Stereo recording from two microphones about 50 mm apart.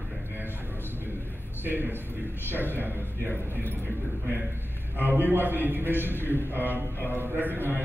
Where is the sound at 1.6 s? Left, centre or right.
Right.